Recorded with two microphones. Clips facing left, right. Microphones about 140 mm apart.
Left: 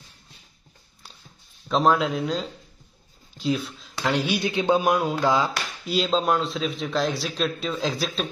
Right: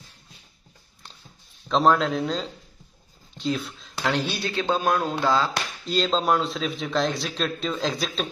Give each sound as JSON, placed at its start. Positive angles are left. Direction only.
{"t": 1.7, "sound": "speech", "side_deg": 0}